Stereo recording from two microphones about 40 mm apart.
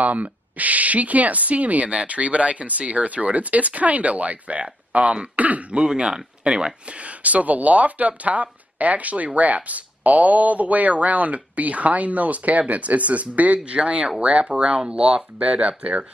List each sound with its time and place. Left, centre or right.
0.0 s speech: right
5.8 s speech: right
14.5 s speech: centre